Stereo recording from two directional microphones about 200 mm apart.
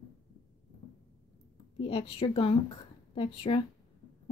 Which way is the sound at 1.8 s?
30° left (ahead or behind).